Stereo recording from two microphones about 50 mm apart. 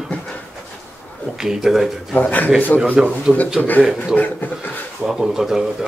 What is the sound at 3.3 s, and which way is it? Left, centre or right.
Speech, right.